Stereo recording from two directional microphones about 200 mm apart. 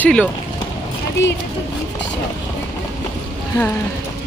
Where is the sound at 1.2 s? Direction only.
65° left (ahead or behind).